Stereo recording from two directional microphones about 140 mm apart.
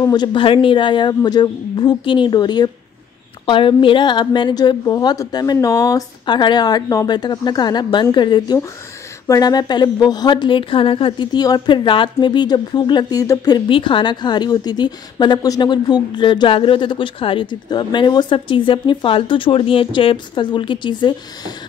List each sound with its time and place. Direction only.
0.0 s a woman's voice: 30° left (ahead or behind)
13.7 s a woman's voice: 35° left (ahead or behind)